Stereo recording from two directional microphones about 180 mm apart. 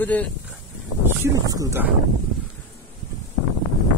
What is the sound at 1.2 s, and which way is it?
Speech, 20° right (ahead or behind).